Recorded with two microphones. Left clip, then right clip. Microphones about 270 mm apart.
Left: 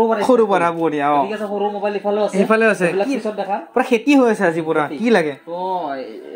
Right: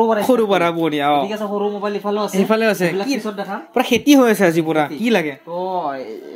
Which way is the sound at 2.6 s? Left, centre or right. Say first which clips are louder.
Left 2 dB; right.